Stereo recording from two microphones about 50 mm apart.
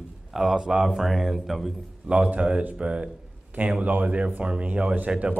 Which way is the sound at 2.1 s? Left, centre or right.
Right.